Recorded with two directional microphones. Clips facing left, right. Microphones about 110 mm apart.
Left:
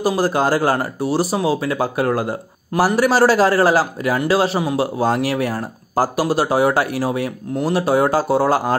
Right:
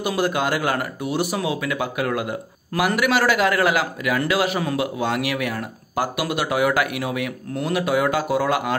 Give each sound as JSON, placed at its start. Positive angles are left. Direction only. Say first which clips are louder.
{"t": 0.0, "sound": "speech", "louder": "left 4 dB", "side_deg": 35}